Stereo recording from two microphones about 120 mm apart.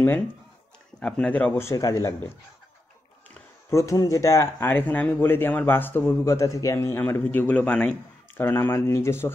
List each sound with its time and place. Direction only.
0.9 s speech: 5° left (ahead or behind)
1.7 s speech: 30° left (ahead or behind)
3.7 s speech: 25° left (ahead or behind)